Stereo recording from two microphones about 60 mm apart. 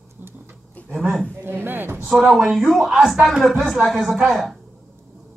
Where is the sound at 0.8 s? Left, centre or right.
Left.